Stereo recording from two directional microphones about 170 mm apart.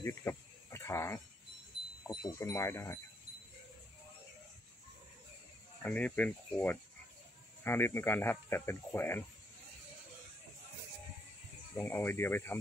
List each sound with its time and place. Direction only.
0.0 s cricket: 15° left (ahead or behind)
2.0 s speech: 20° left (ahead or behind)
5.8 s speech: 10° left (ahead or behind)
11.7 s speech: 10° left (ahead or behind)